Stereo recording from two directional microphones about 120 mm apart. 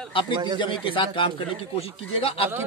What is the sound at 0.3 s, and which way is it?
Speech, 40° right (ahead or behind).